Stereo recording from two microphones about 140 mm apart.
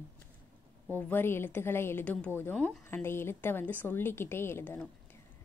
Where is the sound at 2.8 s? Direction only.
15° left (ahead or behind).